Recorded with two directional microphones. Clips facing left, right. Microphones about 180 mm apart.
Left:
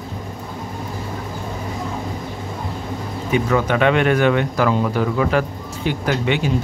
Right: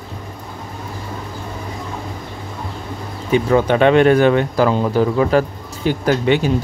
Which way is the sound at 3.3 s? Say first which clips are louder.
Right 4 dB; 30° right (ahead or behind).